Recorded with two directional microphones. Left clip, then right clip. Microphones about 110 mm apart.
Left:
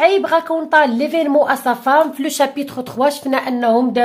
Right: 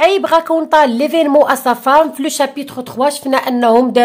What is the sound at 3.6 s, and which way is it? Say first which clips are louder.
Speech: right 5 dB; 55° right (ahead or behind).